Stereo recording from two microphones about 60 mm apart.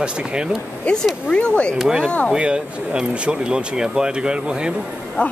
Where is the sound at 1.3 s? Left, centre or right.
Centre.